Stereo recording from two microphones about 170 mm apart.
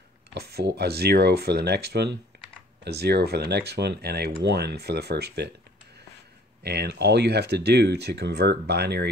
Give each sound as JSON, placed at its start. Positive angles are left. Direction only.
{"t": 0.3, "sound": "speech", "side_deg": -70}
{"t": 6.6, "sound": "speech", "side_deg": -75}